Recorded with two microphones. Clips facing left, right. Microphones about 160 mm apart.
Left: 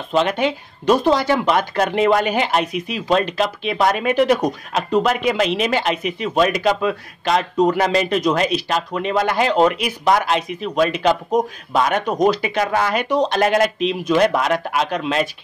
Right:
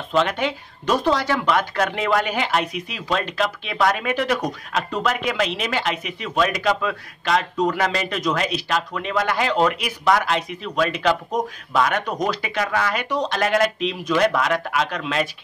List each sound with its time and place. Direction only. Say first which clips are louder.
0.1 s speech: left 3 dB; 20° left (ahead or behind)